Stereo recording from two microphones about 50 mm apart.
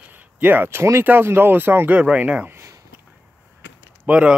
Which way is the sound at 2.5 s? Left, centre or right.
Right.